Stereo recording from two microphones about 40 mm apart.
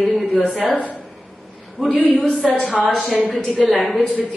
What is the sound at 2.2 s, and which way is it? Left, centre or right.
A woman's voice, centre.